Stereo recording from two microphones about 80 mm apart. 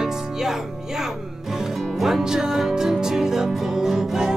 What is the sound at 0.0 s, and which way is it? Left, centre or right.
Music, centre.